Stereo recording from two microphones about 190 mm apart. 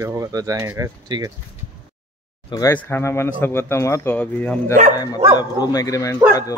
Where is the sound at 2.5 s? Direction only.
20° left (ahead or behind).